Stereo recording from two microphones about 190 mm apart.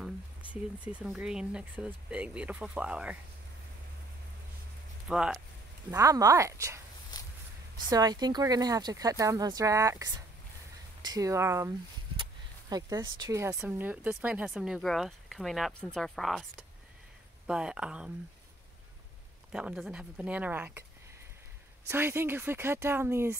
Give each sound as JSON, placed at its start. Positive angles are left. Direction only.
{"t": 0.5, "sound": "speech", "side_deg": -5}
{"t": 5.0, "sound": "speech", "side_deg": -5}
{"t": 5.9, "sound": "speech", "side_deg": -15}
{"t": 7.9, "sound": "speech", "side_deg": -20}
{"t": 17.5, "sound": "speech", "side_deg": -5}
{"t": 19.5, "sound": "speech", "side_deg": -5}
{"t": 21.8, "sound": "speech", "side_deg": -10}